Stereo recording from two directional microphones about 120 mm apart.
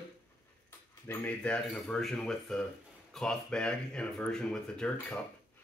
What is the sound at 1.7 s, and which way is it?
Speech, centre (ahead or behind).